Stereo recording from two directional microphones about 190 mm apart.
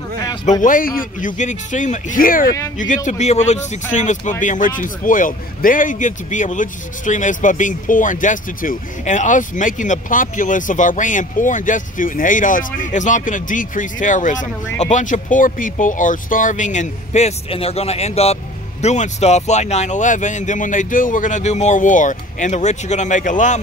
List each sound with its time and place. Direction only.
0.5 s a man's voice: 45° left (ahead or behind)
3.1 s a man's voice: 35° left (ahead or behind)